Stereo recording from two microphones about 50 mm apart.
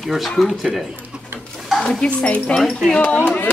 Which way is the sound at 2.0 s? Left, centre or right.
Left.